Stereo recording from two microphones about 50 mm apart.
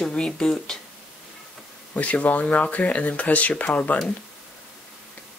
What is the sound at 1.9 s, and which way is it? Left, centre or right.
Speech, left.